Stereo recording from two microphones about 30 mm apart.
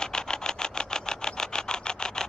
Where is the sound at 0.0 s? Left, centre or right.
Left.